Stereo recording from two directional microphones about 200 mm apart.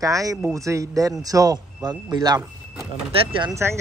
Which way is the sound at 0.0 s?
15° right (ahead or behind).